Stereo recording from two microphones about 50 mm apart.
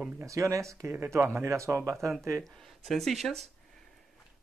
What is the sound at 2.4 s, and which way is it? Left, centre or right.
Speech, centre.